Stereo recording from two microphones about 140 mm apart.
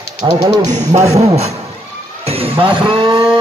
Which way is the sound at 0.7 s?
55° right (ahead or behind).